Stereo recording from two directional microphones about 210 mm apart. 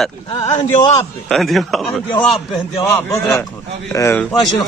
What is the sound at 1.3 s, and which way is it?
Speech, centre (ahead or behind).